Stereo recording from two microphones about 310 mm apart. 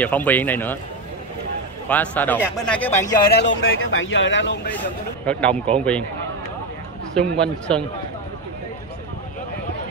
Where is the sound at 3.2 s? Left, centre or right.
Left.